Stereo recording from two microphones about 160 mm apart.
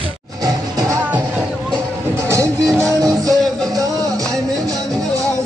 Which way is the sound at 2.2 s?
20° right (ahead or behind).